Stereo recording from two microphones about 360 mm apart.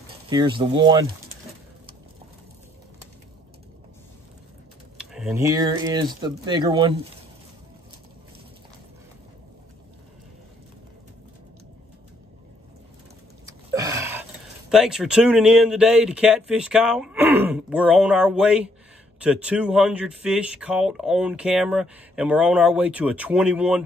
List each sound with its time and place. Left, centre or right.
0.3 s speech: centre
4.9 s speech: centre
13.5 s a sound: centre
14.7 s speech: centre